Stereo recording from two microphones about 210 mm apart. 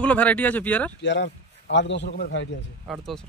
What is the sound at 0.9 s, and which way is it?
Speech, 55° left (ahead or behind).